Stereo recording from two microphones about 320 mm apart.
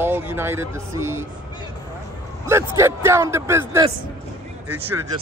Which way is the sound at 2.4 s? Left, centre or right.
Centre.